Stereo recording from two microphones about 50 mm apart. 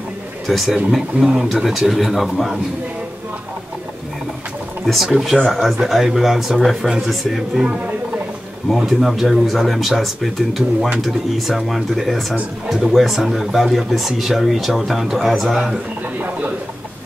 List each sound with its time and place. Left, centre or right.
0.5 s speech: centre
4.8 s speech: centre
8.7 s speech: centre
16.2 s speech: right